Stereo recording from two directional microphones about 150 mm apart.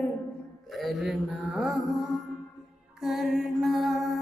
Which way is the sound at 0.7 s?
Centre (ahead or behind).